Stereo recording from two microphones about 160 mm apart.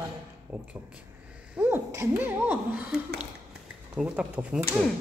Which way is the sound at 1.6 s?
15° right (ahead or behind).